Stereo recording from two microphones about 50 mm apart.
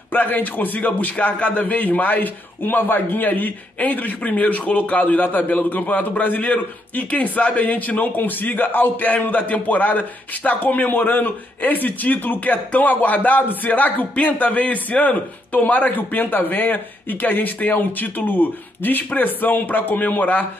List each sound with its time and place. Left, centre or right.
0.1 s a man's voice: left